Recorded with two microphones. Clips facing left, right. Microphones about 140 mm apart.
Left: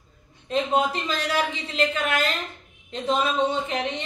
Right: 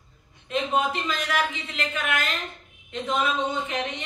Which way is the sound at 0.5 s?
35° left (ahead or behind).